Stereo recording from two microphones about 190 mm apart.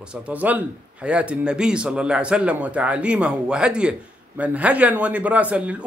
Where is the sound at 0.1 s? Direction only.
10° right (ahead or behind).